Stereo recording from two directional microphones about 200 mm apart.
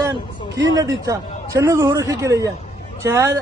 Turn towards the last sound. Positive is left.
turn(degrees=-15)  # may be behind; listen again after turning